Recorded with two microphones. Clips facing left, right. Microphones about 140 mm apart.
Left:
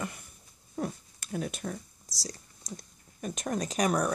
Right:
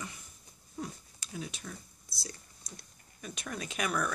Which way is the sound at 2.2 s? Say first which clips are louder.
Left 6 dB; 40° left (ahead or behind).